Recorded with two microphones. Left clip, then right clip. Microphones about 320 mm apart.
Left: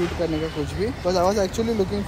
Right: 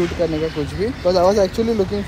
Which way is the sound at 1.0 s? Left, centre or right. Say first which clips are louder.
Right 6 dB; centre.